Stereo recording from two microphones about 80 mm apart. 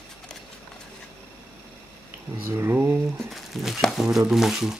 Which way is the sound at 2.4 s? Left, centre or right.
Right.